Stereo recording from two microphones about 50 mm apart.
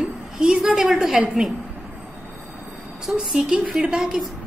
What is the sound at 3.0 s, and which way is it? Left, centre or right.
A woman's voice, centre.